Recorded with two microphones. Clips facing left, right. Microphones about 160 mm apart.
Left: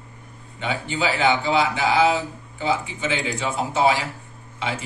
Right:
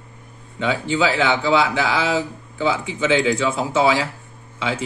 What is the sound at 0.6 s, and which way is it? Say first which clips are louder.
A man's voice: right 5 dB; 90° right.